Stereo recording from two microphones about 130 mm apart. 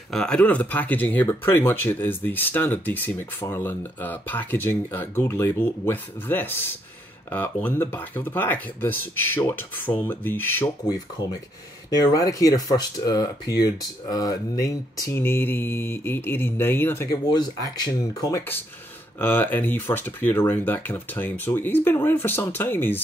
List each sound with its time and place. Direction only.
0.1 s speech: 5° left (ahead or behind)
12.0 s speech: 30° left (ahead or behind)
17.3 s speech: 30° left (ahead or behind); by 23.0 s 15° left (ahead or behind)